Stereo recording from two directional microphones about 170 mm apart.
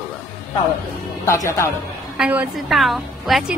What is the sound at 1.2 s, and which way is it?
Speech, 20° left (ahead or behind).